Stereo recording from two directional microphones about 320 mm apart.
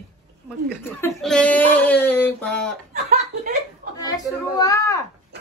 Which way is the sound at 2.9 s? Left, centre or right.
Right.